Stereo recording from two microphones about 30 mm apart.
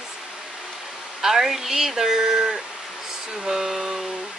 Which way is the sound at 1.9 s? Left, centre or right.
Centre.